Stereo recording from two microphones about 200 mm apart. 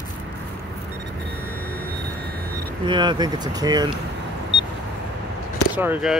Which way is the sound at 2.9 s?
20° right (ahead or behind).